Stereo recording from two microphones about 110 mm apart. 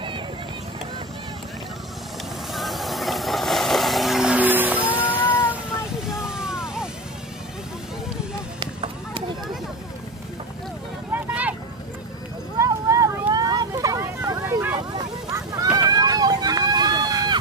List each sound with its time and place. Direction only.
2.5 s vehicle: centre (ahead or behind); by 4.8 s 15° right (ahead or behind)
5.1 s cat: 15° left (ahead or behind)
6.0 s vehicle: 5° right (ahead or behind)
8.5 s a sound: 50° right (ahead or behind)
11.1 s vehicle: 15° right (ahead or behind)
12.5 s clip-clop: 30° right (ahead or behind)
13.3 s vehicle: 35° right (ahead or behind)
15.3 s a sound: 35° right (ahead or behind)
15.9 s run: 35° right (ahead or behind)